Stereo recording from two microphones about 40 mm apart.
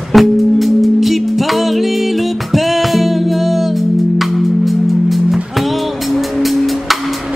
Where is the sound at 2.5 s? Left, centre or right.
Centre.